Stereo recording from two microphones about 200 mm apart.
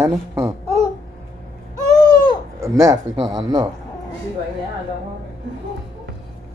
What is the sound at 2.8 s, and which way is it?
Speech, 15° right (ahead or behind).